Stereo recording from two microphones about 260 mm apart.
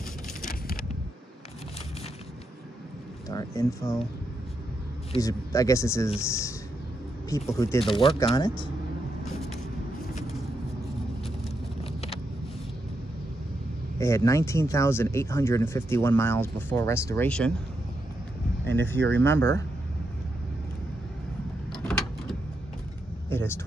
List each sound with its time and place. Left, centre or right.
0.5 s a sound: left
3.3 s speech: centre
5.1 s speech: centre
11.8 s vehicle: left
13.9 s speech: centre
18.7 s speech: centre
18.9 s speech: right
19.2 s speech: centre
21.8 s a sound: centre